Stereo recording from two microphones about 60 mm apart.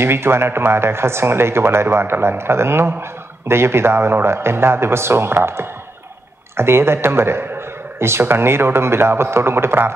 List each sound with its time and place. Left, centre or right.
0.0 s speech: right